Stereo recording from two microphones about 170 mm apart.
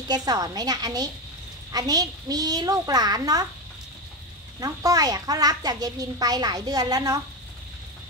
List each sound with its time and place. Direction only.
0.1 s a child's voice: 25° right (ahead or behind)
4.6 s a child's voice: 20° right (ahead or behind)